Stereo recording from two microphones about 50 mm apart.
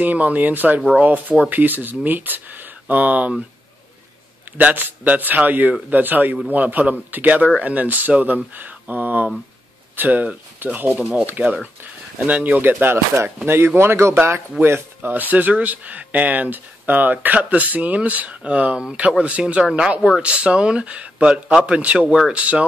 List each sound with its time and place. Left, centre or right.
0.0 s speech: right
4.6 s speech: right
12.8 s speech: right
14.6 s speech: right; by 20.2 s centre
20.2 s speech: right